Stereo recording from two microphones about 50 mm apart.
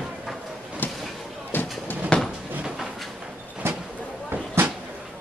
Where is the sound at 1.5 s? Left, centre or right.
Left.